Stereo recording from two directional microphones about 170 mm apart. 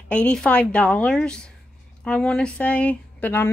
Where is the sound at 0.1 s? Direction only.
5° left (ahead or behind).